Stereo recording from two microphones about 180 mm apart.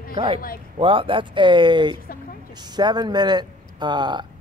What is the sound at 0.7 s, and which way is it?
Speech, 30° right (ahead or behind).